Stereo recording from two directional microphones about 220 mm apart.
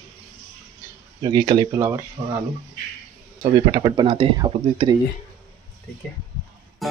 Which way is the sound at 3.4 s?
20° right (ahead or behind).